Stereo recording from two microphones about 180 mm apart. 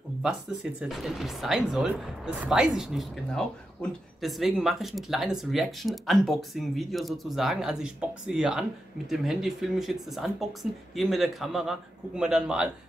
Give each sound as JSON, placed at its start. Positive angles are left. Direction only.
{"t": 0.2, "sound": "speech", "side_deg": -5}